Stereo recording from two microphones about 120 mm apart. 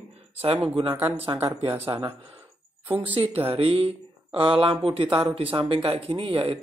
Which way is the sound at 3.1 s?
55° right (ahead or behind).